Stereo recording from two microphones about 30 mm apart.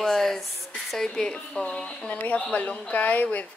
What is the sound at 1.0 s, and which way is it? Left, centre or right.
Speech, left.